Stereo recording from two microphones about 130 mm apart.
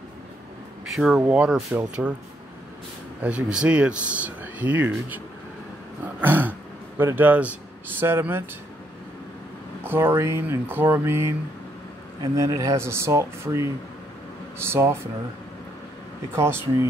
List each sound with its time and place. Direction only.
0.8 s speech: centre (ahead or behind)
3.2 s speech: 10° right (ahead or behind)
6.2 s throat clearing: 15° right (ahead or behind)
7.0 s speech: 15° right (ahead or behind)
9.8 s speech: 20° right (ahead or behind)
16.3 s speech: 20° right (ahead or behind)